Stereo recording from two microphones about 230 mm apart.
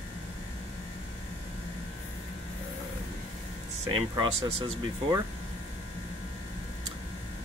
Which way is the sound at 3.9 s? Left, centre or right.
Centre.